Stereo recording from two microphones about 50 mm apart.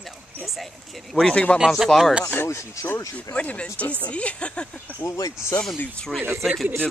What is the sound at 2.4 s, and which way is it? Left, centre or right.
Speech, left.